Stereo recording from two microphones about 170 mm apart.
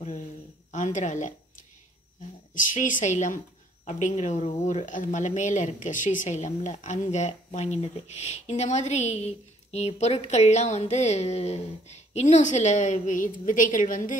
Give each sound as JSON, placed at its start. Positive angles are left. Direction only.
{"t": 0.7, "sound": "speech", "side_deg": 45}
{"t": 2.5, "sound": "speech", "side_deg": 50}